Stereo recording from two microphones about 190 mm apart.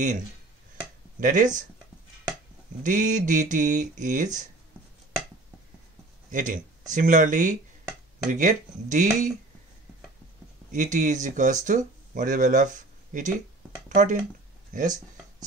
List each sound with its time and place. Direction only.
1.2 s speech: 45° right (ahead or behind)
2.8 s speech: 40° right (ahead or behind)
6.3 s speech: 45° right (ahead or behind)
10.7 s speech: 40° right (ahead or behind)